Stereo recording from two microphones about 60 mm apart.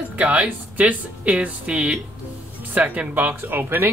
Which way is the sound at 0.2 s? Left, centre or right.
Right.